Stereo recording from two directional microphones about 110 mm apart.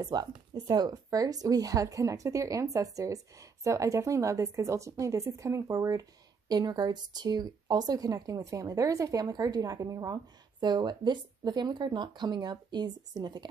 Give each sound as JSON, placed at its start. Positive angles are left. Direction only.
{"t": 0.0, "sound": "speech", "side_deg": -40}